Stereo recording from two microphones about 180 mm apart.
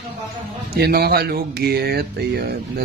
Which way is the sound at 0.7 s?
60° right (ahead or behind).